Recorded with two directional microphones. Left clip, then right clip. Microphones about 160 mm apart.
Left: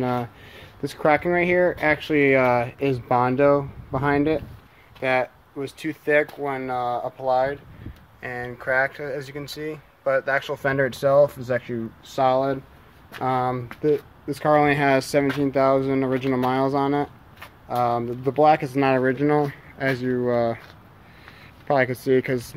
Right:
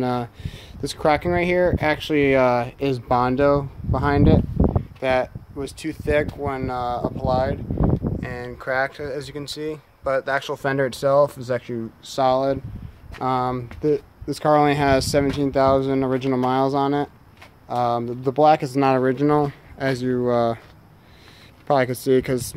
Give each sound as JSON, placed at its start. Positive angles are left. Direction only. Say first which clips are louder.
{"t": 0.0, "sound": "speech", "louder": "right 1 dB", "side_deg": -20}
{"t": 21.6, "sound": "speech", "louder": "right 1 dB", "side_deg": -30}